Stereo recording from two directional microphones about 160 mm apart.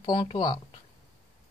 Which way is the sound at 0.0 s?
30° left (ahead or behind).